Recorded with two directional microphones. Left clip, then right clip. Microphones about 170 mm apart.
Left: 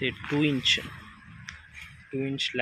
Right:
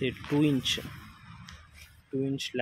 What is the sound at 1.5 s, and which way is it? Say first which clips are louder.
Finger snapping: left 10 dB; 10° right (ahead or behind).